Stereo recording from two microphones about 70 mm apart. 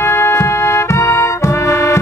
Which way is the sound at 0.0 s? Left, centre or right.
Left.